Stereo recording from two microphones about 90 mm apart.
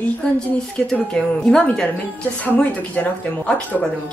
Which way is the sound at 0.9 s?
10° left (ahead or behind).